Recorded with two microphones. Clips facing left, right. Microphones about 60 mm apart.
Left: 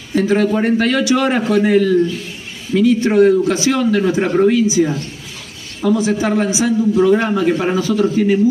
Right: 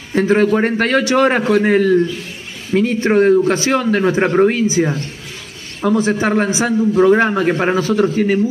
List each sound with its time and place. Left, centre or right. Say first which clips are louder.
0.1 s a man's voice: right 1 dB; right